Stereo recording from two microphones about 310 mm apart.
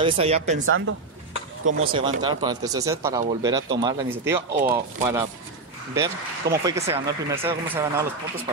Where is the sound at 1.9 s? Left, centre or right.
Centre.